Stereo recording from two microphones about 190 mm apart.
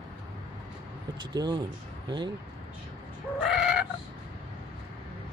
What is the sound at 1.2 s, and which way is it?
Speech, 25° right (ahead or behind).